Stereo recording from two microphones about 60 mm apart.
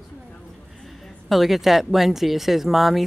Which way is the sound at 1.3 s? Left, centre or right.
Centre.